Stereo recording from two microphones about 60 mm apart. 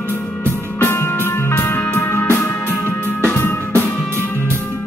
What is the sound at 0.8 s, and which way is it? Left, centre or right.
Music, left.